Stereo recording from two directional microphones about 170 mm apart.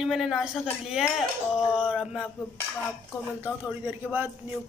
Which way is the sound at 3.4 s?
10° right (ahead or behind).